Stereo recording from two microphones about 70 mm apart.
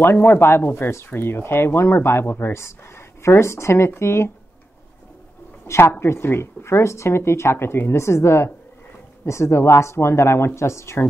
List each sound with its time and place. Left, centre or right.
0.0 s speech: left
5.9 s speech: left